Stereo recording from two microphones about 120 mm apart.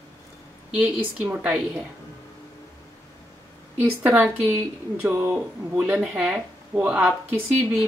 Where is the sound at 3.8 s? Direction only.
15° right (ahead or behind).